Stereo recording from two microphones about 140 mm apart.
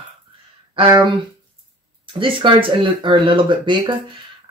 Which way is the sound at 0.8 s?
30° right (ahead or behind).